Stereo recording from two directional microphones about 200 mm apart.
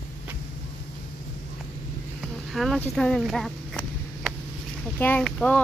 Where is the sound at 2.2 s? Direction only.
Centre (ahead or behind).